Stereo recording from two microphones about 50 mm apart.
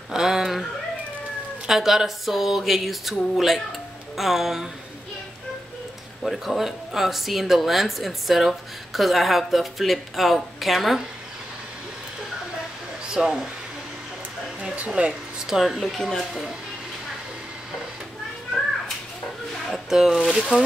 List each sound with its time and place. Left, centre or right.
0.1 s speech: centre
1.7 s speech: centre
6.2 s speech: centre
13.1 s speech: centre
15.0 s speech: right
15.4 s speech: centre
19.7 s speech: centre